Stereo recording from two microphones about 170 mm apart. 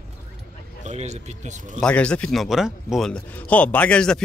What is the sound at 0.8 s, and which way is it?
Speech, 45° right (ahead or behind).